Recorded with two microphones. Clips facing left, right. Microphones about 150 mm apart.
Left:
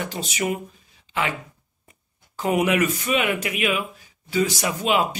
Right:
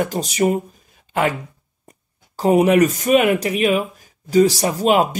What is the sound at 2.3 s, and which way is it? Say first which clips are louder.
A man's voice: right 7 dB; 35° right (ahead or behind).